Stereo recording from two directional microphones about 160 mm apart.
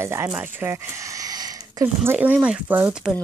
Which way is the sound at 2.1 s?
10° right (ahead or behind).